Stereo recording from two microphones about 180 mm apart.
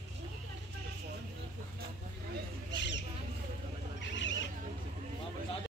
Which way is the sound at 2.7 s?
80° left.